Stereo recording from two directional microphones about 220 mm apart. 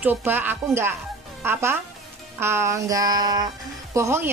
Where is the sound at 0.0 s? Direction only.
10° right (ahead or behind).